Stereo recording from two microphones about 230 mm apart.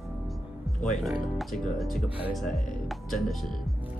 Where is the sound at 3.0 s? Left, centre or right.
Centre.